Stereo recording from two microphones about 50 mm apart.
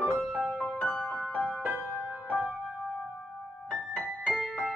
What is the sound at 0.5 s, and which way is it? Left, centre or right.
Music, left.